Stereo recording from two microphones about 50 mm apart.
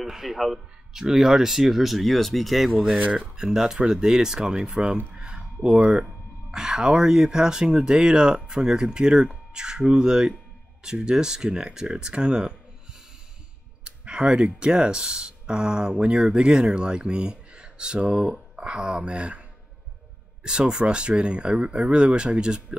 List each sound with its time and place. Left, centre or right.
0.0 s speech: centre
3.1 s speech: right
5.1 s a sound: centre
6.5 s speech: centre
13.8 s speech: centre
20.4 s speech: centre